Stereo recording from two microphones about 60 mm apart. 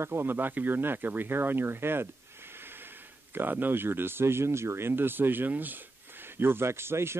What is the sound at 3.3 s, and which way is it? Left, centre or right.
Speech, right.